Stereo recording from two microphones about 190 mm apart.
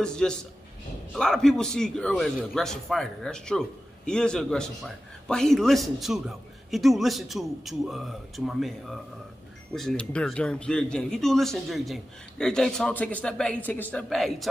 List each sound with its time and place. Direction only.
0.0 s a man's voice: 5° left (ahead or behind)